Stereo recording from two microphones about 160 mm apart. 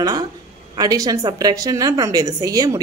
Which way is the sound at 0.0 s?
25° right (ahead or behind).